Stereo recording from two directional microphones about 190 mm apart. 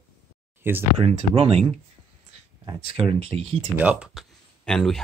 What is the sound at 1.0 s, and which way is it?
Speech, 30° right (ahead or behind).